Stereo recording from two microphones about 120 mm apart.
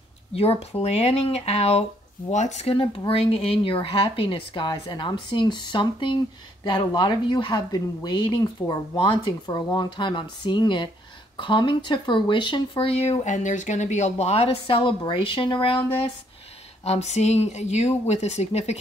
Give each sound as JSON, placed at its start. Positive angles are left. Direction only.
{"t": 0.3, "sound": "speech", "side_deg": 55}
{"t": 2.3, "sound": "a woman's voice", "side_deg": 70}
{"t": 9.5, "sound": "speech", "side_deg": 30}
{"t": 9.8, "sound": "a woman's voice", "side_deg": 40}
{"t": 16.8, "sound": "speech", "side_deg": 65}